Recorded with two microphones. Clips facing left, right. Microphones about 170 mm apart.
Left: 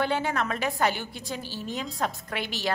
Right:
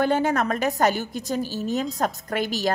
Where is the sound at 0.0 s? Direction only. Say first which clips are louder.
Right 6 dB; 45° right (ahead or behind).